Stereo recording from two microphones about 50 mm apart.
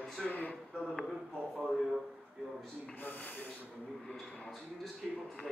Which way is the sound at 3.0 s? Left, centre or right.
Left.